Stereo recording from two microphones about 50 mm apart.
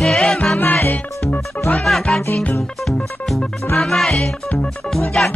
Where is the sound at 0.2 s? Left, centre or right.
Centre.